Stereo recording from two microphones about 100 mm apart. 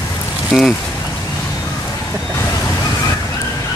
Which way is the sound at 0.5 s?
Centre (ahead or behind).